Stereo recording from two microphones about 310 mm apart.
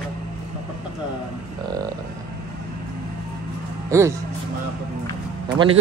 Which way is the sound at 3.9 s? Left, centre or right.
Centre.